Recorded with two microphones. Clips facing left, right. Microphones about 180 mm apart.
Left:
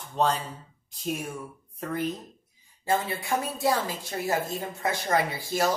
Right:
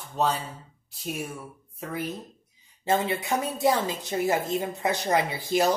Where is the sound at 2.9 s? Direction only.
20° right (ahead or behind).